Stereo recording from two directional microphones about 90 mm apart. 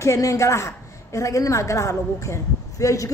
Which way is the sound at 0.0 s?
35° left (ahead or behind).